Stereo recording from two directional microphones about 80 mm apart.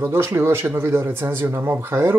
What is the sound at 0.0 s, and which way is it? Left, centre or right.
Speech, right.